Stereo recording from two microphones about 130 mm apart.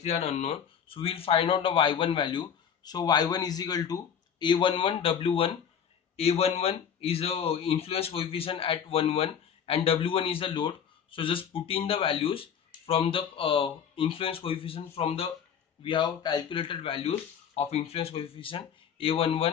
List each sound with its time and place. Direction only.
0.0 s speech: 55° left (ahead or behind)
15.8 s speech: 35° left (ahead or behind)